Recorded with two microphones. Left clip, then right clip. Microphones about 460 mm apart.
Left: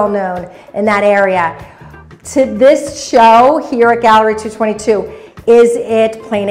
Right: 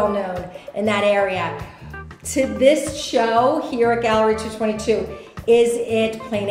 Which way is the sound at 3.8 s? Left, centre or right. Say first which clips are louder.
Left 10 dB; left.